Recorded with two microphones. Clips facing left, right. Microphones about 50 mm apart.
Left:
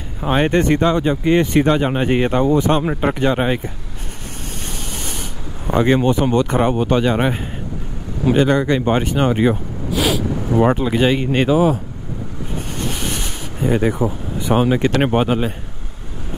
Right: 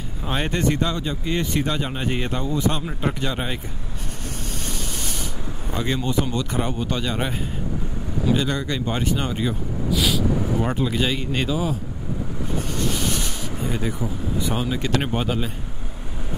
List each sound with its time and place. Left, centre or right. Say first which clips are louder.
0.2 s speech: left 8 dB; left
2.4 s speech: left 9 dB; left
5.7 s speech: left 10 dB; left
12.7 s a sound: left 1 dB; left